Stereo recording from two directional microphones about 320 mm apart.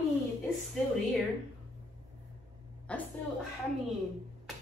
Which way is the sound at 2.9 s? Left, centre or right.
Centre.